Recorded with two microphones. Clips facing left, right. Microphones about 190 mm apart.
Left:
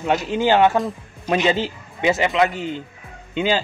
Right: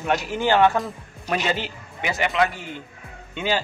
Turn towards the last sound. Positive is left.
turn(degrees=25)  # may be behind; listen again after turning